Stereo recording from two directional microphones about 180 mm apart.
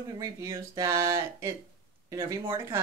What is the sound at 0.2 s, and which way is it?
Speech, 20° right (ahead or behind).